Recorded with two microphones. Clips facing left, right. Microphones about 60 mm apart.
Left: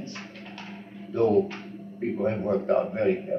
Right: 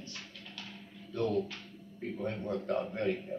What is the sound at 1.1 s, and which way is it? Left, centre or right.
A man's voice, left.